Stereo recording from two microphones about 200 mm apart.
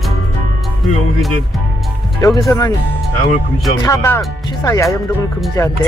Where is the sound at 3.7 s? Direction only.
15° left (ahead or behind).